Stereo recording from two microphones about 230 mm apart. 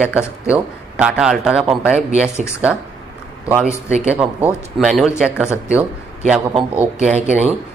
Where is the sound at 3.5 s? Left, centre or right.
Centre.